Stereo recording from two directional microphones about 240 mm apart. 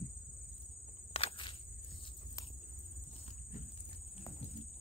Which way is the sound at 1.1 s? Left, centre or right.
Left.